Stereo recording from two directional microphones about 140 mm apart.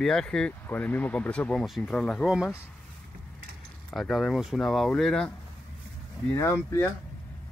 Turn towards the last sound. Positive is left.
turn(degrees=20)  # may be behind; listen again after turning